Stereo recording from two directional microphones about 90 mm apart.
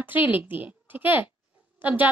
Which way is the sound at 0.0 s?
20° right (ahead or behind).